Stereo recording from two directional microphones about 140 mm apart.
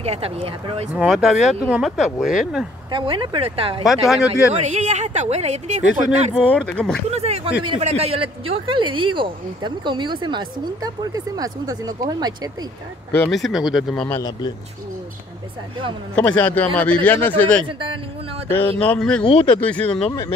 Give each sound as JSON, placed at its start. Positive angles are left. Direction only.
{"t": 0.0, "sound": "speech", "side_deg": -45}
{"t": 0.9, "sound": "speech", "side_deg": 0}
{"t": 2.9, "sound": "speech", "side_deg": -35}
{"t": 3.8, "sound": "speech", "side_deg": 0}
{"t": 4.3, "sound": "speech", "side_deg": -55}
{"t": 6.4, "sound": "a man's voice", "side_deg": 10}
{"t": 7.1, "sound": "speech", "side_deg": -50}
{"t": 13.3, "sound": "speech", "side_deg": 0}
{"t": 16.2, "sound": "a man's voice", "side_deg": 10}
{"t": 17.6, "sound": "speech", "side_deg": -35}
{"t": 18.5, "sound": "a man's voice", "side_deg": 15}
{"t": 20.1, "sound": "speech", "side_deg": 20}